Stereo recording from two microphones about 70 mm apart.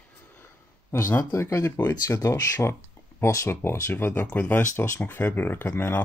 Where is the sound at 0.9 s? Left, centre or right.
Left.